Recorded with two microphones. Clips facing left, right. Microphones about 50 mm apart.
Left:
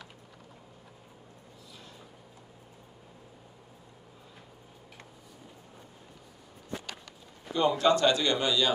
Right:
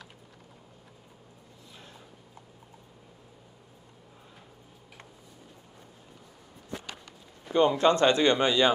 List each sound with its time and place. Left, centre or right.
7.5 s a man's voice: right